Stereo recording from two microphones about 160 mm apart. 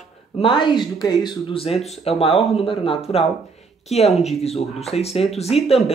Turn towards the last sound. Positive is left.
turn(degrees=40)  # may be behind; listen again after turning